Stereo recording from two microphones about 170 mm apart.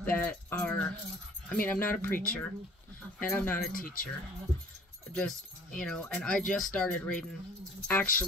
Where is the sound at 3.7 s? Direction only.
55° left (ahead or behind).